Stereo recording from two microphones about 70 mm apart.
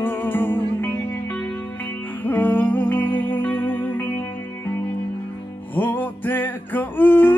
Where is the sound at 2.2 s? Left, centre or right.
Left.